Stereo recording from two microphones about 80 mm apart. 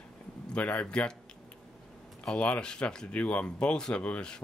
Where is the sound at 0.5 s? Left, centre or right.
Centre.